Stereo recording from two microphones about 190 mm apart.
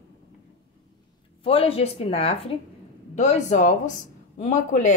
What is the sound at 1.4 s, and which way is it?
Speech, 30° left (ahead or behind).